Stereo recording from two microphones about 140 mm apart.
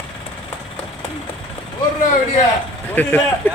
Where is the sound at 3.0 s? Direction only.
15° left (ahead or behind).